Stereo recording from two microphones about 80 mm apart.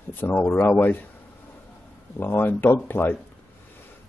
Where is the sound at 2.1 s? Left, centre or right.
Left.